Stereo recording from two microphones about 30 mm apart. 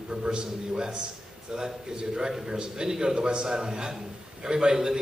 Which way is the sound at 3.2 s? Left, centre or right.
Right.